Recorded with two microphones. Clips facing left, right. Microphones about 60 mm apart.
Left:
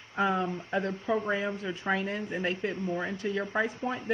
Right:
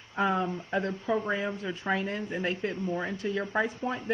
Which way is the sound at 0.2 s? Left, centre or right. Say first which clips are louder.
Even; centre.